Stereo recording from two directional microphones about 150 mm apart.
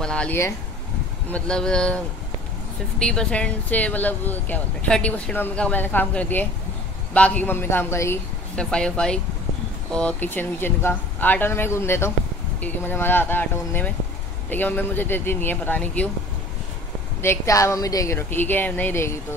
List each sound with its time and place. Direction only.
0.0 s speech: 5° left (ahead or behind)
3.0 s speech: 5° left (ahead or behind)
8.5 s speech: 5° left (ahead or behind)
17.2 s speech: 20° left (ahead or behind)